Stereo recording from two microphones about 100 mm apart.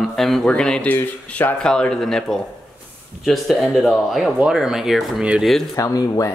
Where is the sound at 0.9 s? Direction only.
20° left (ahead or behind); by 5.4 s 10° right (ahead or behind).